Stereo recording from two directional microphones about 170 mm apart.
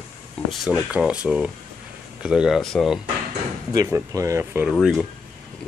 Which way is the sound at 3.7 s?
20° right (ahead or behind).